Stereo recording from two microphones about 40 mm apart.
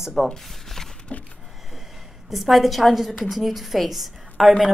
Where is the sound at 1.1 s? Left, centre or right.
Left.